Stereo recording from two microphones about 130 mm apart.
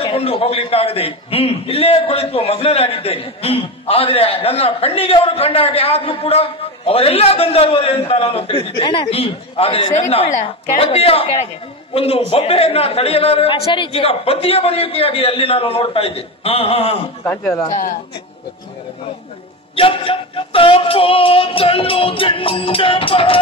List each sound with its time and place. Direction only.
0.0 s a man's voice: 45° left (ahead or behind)
17.5 s speech: 25° left (ahead or behind)
19.7 s a man's voice: 45° left (ahead or behind)